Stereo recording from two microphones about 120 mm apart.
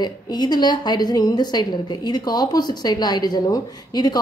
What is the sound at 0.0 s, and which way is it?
A woman's voice, 35° left (ahead or behind).